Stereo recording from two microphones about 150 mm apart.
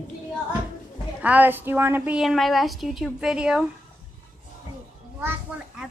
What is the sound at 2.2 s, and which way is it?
A woman's voice, centre (ahead or behind).